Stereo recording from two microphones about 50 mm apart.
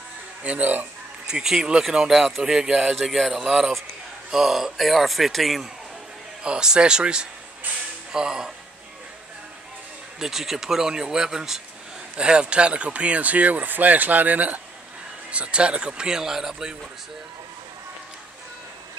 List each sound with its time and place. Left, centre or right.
0.4 s speech: right
1.2 s speech: centre
3.0 s speech: centre
6.4 s speech: centre
10.1 s speech: centre; by 14.6 s right
15.3 s speech: right